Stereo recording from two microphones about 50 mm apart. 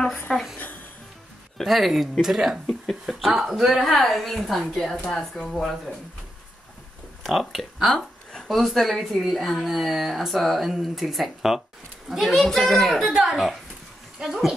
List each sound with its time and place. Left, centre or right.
0.3 s a sound: centre
1.6 s speech: centre
5.0 s speech: centre
7.2 s speech: centre